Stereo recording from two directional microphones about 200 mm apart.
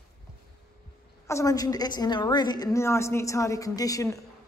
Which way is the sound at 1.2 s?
15° left (ahead or behind).